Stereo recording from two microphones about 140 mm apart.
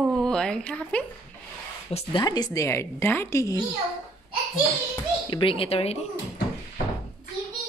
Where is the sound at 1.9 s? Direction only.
45° left (ahead or behind).